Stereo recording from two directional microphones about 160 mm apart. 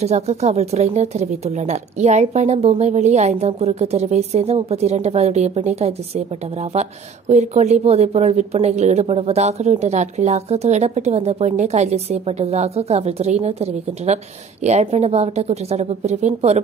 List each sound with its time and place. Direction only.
0.0 s a woman's voice: 40° right (ahead or behind)